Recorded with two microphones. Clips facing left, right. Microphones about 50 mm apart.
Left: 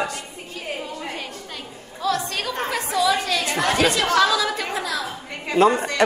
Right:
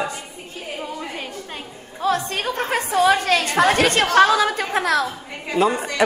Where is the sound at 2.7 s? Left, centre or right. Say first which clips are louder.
Right 4 dB; right.